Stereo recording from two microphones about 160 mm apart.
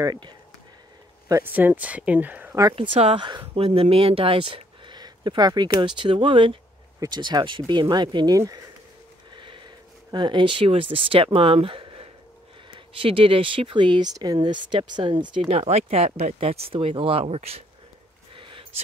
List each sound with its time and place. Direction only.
0.0 s speech: 25° right (ahead or behind)
1.3 s speech: 10° right (ahead or behind)
2.7 s speech: 35° right (ahead or behind)
9.3 s a sound: 30° right (ahead or behind)
10.1 s speech: 30° right (ahead or behind)
18.3 s a sound: 35° right (ahead or behind)